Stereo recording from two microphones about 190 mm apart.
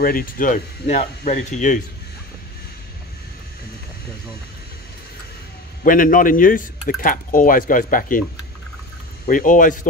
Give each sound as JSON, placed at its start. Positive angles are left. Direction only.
{"t": 0.0, "sound": "speech", "side_deg": 50}
{"t": 5.9, "sound": "speech", "side_deg": 45}
{"t": 9.3, "sound": "speech", "side_deg": 45}